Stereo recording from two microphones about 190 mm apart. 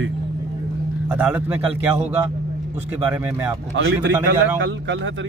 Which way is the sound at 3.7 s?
90° right.